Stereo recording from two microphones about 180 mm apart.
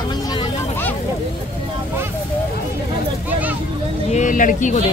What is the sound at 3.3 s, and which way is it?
Speech, 10° right (ahead or behind).